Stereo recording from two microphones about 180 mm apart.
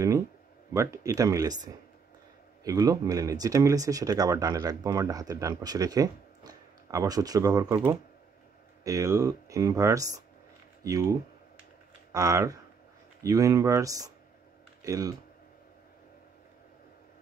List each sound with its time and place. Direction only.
0.7 s speech: 15° right (ahead or behind)